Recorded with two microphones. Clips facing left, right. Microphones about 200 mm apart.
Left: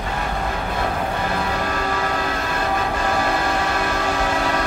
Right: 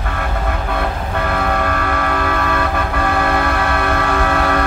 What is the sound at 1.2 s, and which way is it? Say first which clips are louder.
Vehicle: right 4 dB; 60° right (ahead or behind).